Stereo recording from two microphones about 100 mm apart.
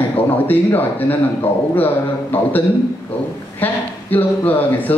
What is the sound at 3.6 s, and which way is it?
Speech, 20° left (ahead or behind).